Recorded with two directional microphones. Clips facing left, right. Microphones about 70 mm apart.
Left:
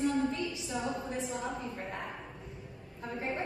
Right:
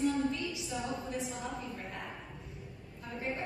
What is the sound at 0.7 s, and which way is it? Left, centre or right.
Speech, left.